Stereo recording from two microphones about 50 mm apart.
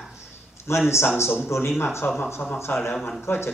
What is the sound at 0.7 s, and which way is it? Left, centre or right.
Speech, left.